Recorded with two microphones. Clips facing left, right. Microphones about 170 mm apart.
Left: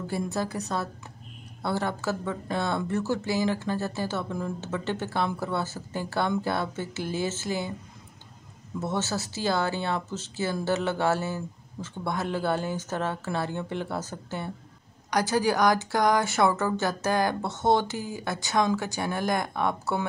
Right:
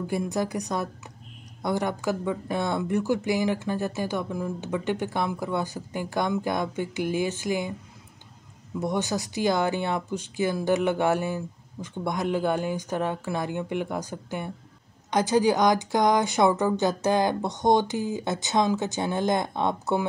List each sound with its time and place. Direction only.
0.0 s speech: 15° right (ahead or behind)
8.7 s a woman's voice: 15° right (ahead or behind)